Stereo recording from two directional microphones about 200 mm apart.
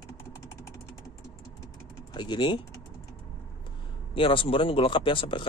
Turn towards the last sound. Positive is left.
turn(degrees=25)  # may be behind; listen again after turning